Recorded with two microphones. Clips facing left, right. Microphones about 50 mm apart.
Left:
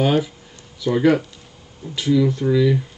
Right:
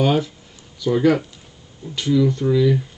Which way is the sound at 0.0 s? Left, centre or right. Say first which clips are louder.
Even; centre.